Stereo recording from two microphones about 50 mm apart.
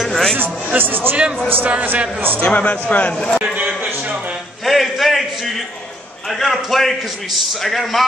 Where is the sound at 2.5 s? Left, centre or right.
Left.